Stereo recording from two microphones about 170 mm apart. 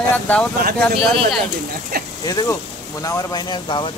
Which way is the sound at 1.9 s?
65° right (ahead or behind).